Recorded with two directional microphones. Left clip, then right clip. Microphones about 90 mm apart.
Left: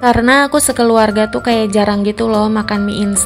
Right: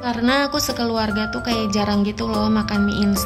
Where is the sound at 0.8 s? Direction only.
40° left (ahead or behind).